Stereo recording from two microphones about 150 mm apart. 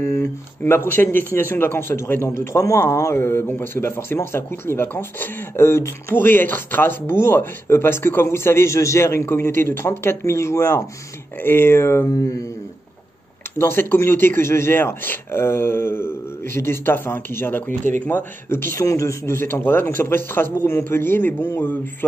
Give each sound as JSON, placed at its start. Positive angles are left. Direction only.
{"t": 0.0, "sound": "speech", "side_deg": 20}
{"t": 13.6, "sound": "speech", "side_deg": 15}